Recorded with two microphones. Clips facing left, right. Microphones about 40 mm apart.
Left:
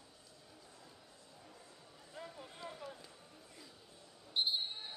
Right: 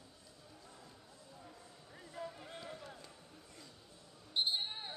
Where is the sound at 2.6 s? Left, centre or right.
Centre.